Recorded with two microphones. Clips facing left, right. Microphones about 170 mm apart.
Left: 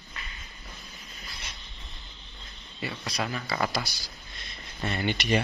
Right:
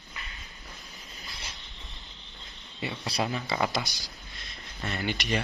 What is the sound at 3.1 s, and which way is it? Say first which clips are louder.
Speech: right 2 dB; 25° right (ahead or behind).